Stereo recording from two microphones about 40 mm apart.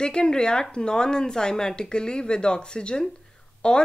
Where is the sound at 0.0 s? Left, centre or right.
Left.